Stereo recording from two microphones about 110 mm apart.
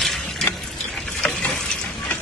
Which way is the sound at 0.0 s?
5° left (ahead or behind).